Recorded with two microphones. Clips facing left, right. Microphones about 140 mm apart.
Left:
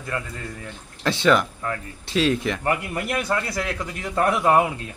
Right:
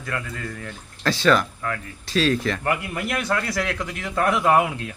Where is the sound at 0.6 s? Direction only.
20° left (ahead or behind).